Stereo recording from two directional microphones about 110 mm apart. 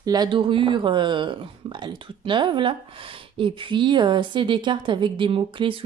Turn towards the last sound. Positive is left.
turn(degrees=-50)  # may be behind; listen again after turning